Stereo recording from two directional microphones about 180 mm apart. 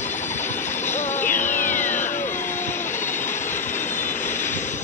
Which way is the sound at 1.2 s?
45° left (ahead or behind).